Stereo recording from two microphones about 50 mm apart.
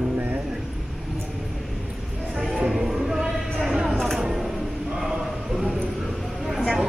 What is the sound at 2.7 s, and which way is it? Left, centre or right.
Music, centre.